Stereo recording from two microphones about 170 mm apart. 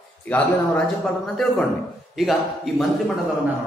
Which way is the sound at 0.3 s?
5° left (ahead or behind).